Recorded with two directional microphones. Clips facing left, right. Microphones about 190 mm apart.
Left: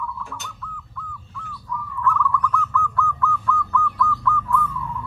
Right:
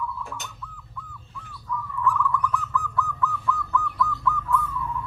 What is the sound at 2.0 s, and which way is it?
Bird, 15° right (ahead or behind).